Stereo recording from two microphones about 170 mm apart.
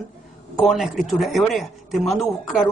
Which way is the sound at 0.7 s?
Centre (ahead or behind).